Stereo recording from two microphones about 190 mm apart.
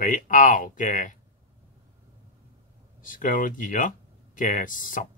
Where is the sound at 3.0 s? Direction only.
45° left (ahead or behind).